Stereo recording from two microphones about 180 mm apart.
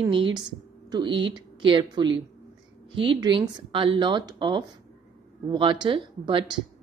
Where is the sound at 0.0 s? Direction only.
25° right (ahead or behind).